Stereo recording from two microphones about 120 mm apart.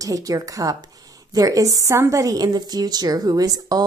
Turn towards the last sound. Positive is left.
turn(degrees=-30)  # may be behind; listen again after turning